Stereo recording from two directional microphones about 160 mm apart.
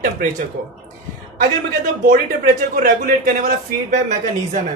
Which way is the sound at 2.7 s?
65° right (ahead or behind).